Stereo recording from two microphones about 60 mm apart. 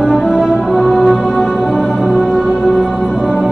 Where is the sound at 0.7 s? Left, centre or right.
Centre.